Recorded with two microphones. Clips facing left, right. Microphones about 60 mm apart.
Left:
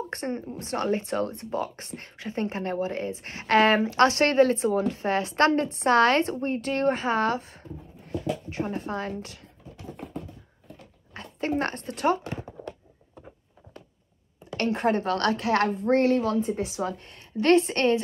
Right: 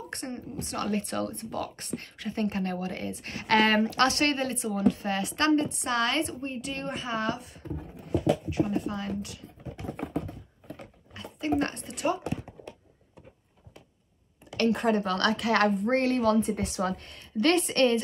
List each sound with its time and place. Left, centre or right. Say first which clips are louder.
0.1 s a woman's voice: left 5 dB; left
7.7 s beatboxing: right 4 dB; right
8.5 s a woman's voice: right 2 dB; left
9.8 s typing: right 4 dB; right
11.1 s speech: even; left
14.6 s a woman's voice: even; left
16.5 s speech: left 1 dB; centre
17.0 s speech: even; left